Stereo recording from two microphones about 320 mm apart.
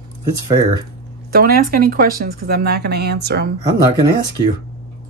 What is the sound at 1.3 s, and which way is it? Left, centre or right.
Speech, right.